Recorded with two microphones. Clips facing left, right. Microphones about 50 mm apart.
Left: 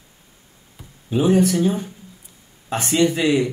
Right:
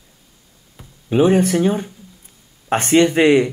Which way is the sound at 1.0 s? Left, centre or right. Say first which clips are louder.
Right 3 dB; right.